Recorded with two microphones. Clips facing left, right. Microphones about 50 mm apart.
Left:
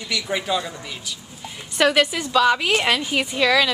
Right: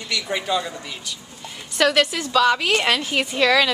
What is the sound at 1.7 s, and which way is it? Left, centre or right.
A woman's voice, centre.